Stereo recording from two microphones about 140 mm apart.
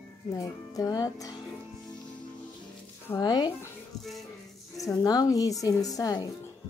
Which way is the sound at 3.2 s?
30° left (ahead or behind).